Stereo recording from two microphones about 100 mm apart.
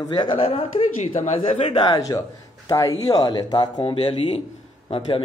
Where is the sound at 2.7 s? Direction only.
35° left (ahead or behind).